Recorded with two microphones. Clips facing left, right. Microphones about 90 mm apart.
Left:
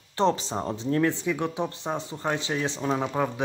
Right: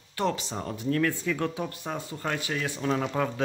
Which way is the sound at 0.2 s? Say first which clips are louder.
Left 5 dB; 30° left (ahead or behind).